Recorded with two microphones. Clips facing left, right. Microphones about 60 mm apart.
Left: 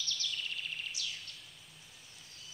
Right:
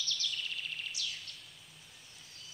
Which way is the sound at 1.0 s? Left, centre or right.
Left.